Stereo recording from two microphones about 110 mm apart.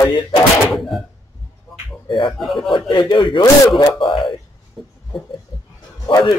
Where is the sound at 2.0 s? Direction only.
50° left (ahead or behind).